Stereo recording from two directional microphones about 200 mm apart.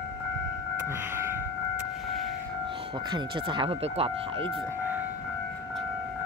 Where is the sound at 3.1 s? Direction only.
25° right (ahead or behind).